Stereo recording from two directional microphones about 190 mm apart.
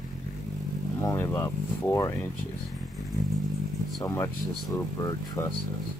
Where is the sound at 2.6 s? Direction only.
Centre (ahead or behind).